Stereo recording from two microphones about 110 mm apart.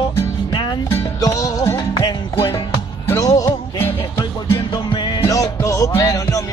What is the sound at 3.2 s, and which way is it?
Music, 35° left (ahead or behind).